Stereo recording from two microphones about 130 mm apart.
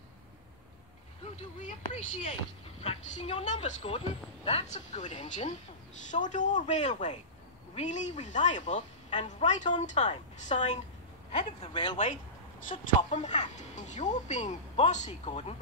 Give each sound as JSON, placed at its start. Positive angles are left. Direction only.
{"t": 1.7, "sound": "a woman's voice", "side_deg": 65}
{"t": 2.8, "sound": "a woman's voice", "side_deg": 50}
{"t": 11.7, "sound": "speech", "side_deg": 40}
{"t": 13.1, "sound": "a woman's voice", "side_deg": 65}